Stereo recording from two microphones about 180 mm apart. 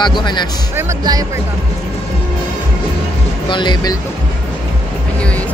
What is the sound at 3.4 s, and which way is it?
Speech, 25° left (ahead or behind).